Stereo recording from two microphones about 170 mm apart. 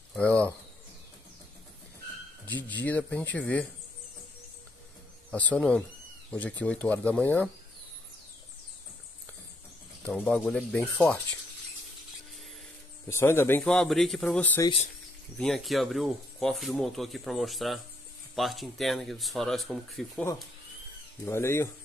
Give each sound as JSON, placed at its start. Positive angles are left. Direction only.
{"t": 0.1, "sound": "speech", "side_deg": 10}
{"t": 2.4, "sound": "speech", "side_deg": 10}
{"t": 5.3, "sound": "speech", "side_deg": 10}
{"t": 10.0, "sound": "speech", "side_deg": 10}
{"t": 13.1, "sound": "speech", "side_deg": 15}
{"t": 21.3, "sound": "speech", "side_deg": 15}